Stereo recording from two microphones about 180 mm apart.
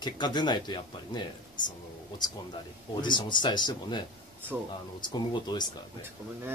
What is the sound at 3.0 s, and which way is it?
Speech, 25° left (ahead or behind).